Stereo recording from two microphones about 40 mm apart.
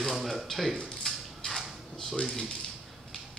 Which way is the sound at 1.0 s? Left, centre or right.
Centre.